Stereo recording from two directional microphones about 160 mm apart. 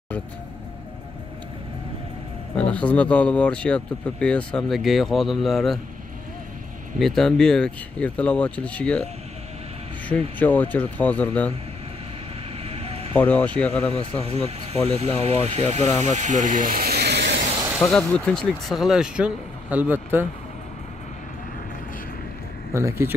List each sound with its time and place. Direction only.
2.5 s speech: 5° left (ahead or behind)
7.0 s speech: centre (ahead or behind)
10.4 s speech: 10° left (ahead or behind)
12.6 s vehicle: 40° right (ahead or behind)
13.2 s speech: 10° left (ahead or behind)
13.9 s speech: 35° right (ahead or behind); by 17.4 s 90° right
17.7 s speech: 5° left (ahead or behind); by 20.2 s 10° right (ahead or behind)
22.8 s speech: 15° right (ahead or behind)